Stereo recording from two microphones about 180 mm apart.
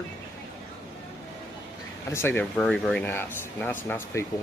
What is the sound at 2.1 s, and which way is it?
Speech, 10° left (ahead or behind).